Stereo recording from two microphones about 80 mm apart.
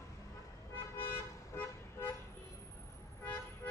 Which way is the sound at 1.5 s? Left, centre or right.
Left.